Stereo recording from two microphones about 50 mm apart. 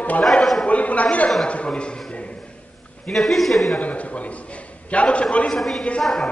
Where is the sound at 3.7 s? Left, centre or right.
Left.